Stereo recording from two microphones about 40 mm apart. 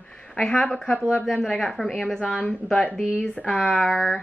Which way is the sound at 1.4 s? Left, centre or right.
Centre.